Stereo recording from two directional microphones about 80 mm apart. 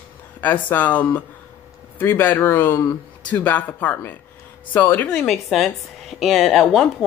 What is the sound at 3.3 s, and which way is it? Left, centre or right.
Speech, centre.